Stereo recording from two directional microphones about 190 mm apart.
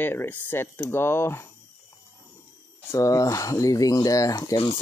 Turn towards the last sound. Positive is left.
turn(degrees=25)  # may be behind; listen again after turning